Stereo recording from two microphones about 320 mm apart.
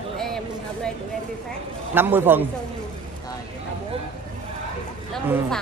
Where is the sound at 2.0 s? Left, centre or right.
Centre.